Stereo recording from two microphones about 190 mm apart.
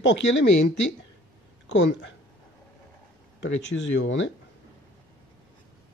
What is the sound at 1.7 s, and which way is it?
Speech, 70° left (ahead or behind).